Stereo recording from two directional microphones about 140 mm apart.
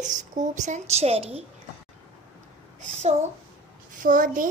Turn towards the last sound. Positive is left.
turn(degrees=-75)  # may be behind; listen again after turning